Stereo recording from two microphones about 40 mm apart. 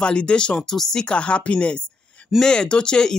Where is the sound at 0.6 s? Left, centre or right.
Centre.